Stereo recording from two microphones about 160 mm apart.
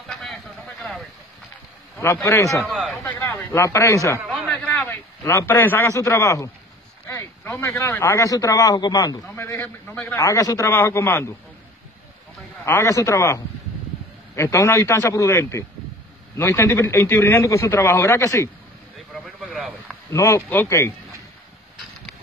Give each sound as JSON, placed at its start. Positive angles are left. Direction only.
{"t": 0.1, "sound": "a sound", "side_deg": 0}
{"t": 2.2, "sound": "a man's voice", "side_deg": 20}
{"t": 2.6, "sound": "speech", "side_deg": 0}
{"t": 2.9, "sound": "a sound", "side_deg": 15}
{"t": 5.2, "sound": "a man's voice", "side_deg": 20}
{"t": 9.3, "sound": "a man's voice", "side_deg": 15}
{"t": 12.6, "sound": "a man's voice", "side_deg": 15}
{"t": 19.2, "sound": "a sound", "side_deg": 0}
{"t": 20.1, "sound": "a man's voice", "side_deg": 20}